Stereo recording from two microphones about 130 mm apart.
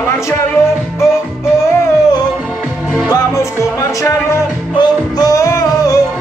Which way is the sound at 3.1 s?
25° left (ahead or behind).